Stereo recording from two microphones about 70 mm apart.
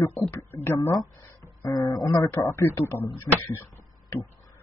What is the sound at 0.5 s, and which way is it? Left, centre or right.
Speech, left.